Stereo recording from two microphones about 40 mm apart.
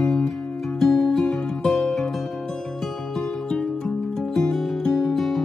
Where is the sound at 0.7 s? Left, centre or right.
Centre.